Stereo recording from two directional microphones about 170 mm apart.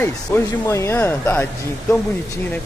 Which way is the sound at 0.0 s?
15° left (ahead or behind).